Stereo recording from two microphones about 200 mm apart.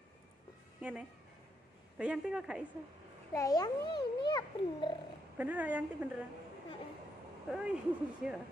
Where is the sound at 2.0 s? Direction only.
5° right (ahead or behind).